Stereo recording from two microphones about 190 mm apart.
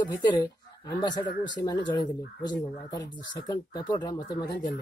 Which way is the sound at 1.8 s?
25° left (ahead or behind).